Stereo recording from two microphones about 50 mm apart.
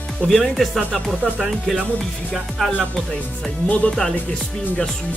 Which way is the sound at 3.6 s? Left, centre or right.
Left.